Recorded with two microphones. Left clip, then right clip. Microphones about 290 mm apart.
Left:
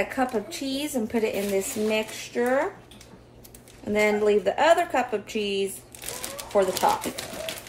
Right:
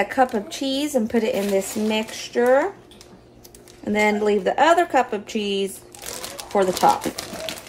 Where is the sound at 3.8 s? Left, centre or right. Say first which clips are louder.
Right 2 dB; right.